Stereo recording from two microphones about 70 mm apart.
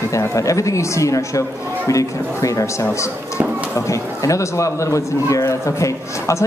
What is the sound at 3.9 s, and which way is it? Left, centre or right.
A man's voice, left.